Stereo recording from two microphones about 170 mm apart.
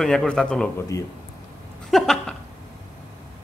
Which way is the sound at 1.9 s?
Centre (ahead or behind).